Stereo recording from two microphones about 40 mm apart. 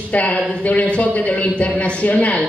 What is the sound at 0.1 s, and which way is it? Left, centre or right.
Speech, left.